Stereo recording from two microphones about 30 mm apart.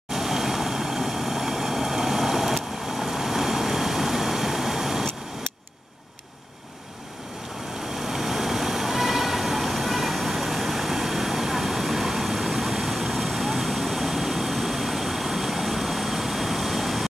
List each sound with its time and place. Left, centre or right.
0.1 s vehicle: centre
8.0 s vehicle: centre